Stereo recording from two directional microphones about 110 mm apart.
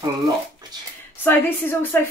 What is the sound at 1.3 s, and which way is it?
Speech, 20° left (ahead or behind).